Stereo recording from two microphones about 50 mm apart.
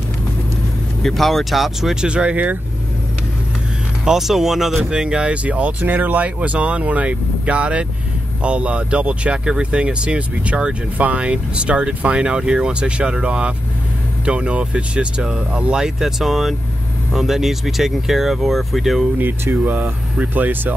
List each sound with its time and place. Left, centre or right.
1.0 s speech: centre
2.0 s speech: right
4.0 s speech: centre
4.9 s speech: centre
19.5 s speech: right